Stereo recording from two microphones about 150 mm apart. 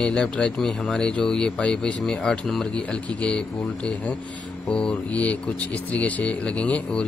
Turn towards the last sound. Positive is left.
turn(degrees=10)  # may be behind; listen again after turning